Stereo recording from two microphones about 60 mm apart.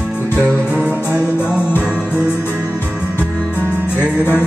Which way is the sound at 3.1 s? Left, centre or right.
Left.